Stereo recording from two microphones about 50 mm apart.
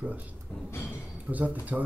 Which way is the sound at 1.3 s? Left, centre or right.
Right.